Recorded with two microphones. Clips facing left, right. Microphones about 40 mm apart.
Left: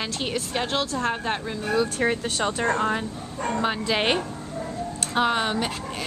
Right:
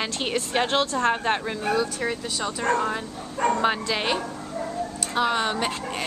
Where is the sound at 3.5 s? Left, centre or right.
Centre.